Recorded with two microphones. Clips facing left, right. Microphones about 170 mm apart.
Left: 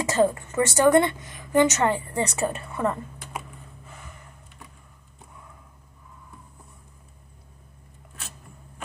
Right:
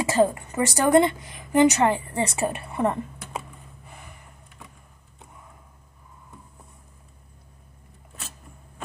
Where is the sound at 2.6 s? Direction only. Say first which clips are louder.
Right 2 dB; 30° right (ahead or behind).